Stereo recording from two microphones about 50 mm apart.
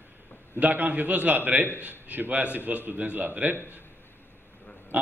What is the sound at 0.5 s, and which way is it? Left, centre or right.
Speech, right.